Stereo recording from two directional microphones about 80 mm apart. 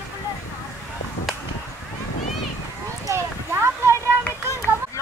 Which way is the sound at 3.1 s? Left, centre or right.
Right.